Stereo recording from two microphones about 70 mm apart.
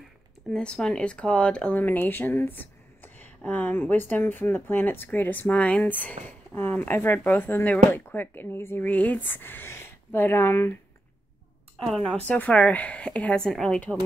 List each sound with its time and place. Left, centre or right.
0.5 s speech: centre
1.8 s speech: left
11.8 s speech: centre
12.3 s speech: centre